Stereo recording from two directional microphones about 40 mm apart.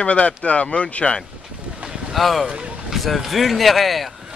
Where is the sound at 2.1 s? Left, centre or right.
Centre.